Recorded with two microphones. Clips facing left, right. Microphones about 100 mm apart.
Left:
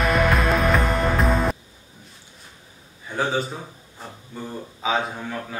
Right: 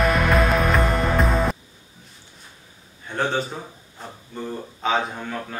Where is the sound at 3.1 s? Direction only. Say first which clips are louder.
Even; centre (ahead or behind).